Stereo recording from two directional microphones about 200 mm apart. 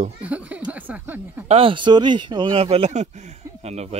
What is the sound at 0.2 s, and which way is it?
Speech, 5° right (ahead or behind).